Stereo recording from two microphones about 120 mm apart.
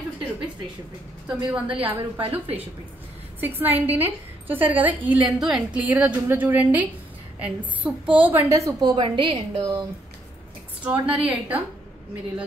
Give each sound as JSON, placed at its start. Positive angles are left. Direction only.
{"t": 1.3, "sound": "a woman's voice", "side_deg": -10}
{"t": 8.9, "sound": "a woman's voice", "side_deg": -40}
{"t": 10.8, "sound": "a woman's voice", "side_deg": -10}